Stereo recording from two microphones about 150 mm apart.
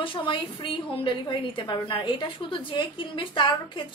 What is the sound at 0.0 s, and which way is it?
A woman's voice, 35° left (ahead or behind).